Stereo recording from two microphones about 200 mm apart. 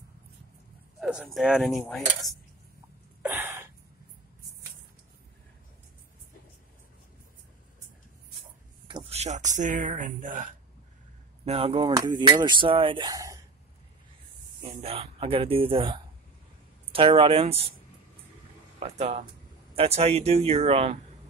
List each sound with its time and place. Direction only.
1.0 s speech: centre (ahead or behind)
3.2 s gasp: 10° right (ahead or behind)
8.8 s speech: 25° right (ahead or behind)
11.4 s speech: 30° right (ahead or behind)
14.8 s speech: 30° right (ahead or behind)
18.8 s speech: 30° right (ahead or behind)